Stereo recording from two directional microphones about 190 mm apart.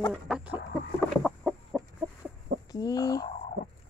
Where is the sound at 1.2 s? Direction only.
Centre (ahead or behind).